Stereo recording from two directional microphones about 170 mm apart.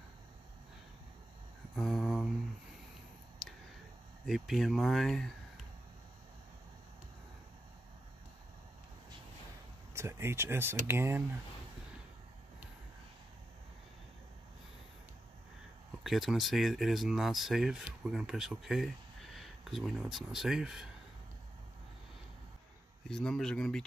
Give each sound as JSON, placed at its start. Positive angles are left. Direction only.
{"t": 1.8, "sound": "a sound", "side_deg": 0}
{"t": 4.3, "sound": "speech", "side_deg": 0}
{"t": 9.9, "sound": "speech", "side_deg": -15}
{"t": 16.0, "sound": "speech", "side_deg": 0}
{"t": 23.0, "sound": "speech", "side_deg": 5}